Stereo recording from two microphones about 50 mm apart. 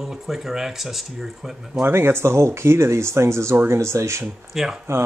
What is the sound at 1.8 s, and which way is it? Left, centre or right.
Speech, right.